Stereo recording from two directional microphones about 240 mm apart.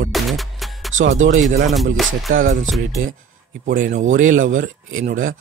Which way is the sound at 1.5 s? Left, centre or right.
Right.